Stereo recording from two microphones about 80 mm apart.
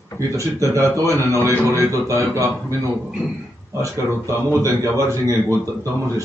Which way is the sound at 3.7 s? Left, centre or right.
Right.